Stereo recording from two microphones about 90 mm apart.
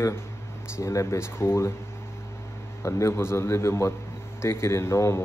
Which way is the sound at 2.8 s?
30° left (ahead or behind).